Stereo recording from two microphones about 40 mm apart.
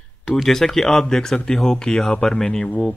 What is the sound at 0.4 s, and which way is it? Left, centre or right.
Speech, centre.